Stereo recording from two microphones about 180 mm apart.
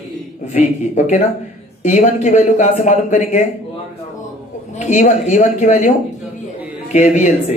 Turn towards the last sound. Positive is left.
turn(degrees=40)  # may be behind; listen again after turning